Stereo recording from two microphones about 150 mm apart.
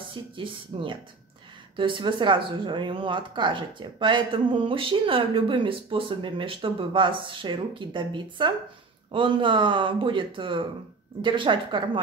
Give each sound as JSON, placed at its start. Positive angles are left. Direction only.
{"t": 0.1, "sound": "speech", "side_deg": -35}